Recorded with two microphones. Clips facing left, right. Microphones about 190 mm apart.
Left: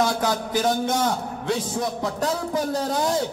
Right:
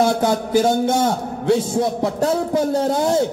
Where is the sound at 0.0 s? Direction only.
25° right (ahead or behind).